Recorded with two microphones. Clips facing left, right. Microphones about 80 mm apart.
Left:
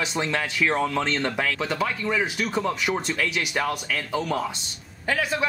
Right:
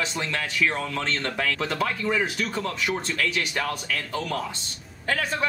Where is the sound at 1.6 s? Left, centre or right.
Centre.